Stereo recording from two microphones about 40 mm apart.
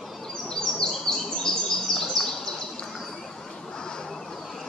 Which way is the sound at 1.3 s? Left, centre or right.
Centre.